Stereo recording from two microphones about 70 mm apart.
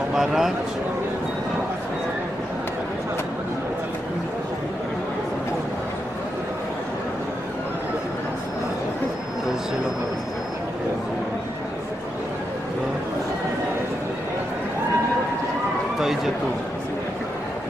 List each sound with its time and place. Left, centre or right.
0.1 s speech: centre